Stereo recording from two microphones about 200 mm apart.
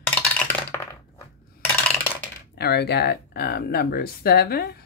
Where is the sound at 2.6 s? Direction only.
55° left (ahead or behind).